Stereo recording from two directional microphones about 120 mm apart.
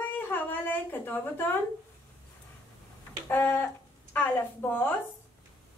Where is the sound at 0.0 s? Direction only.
15° left (ahead or behind).